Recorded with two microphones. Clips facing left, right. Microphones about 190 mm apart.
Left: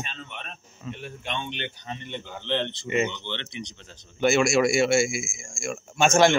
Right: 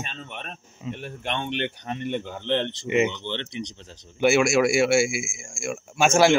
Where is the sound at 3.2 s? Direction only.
35° right (ahead or behind).